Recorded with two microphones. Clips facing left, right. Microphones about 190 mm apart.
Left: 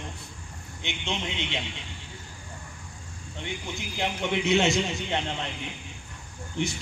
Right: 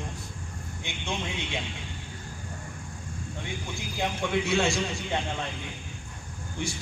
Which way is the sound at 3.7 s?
20° left (ahead or behind).